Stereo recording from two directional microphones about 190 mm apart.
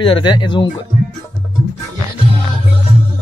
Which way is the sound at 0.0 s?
25° left (ahead or behind).